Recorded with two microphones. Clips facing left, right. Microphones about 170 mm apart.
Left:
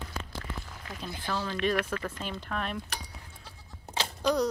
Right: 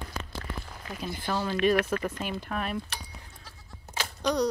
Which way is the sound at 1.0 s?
10° right (ahead or behind).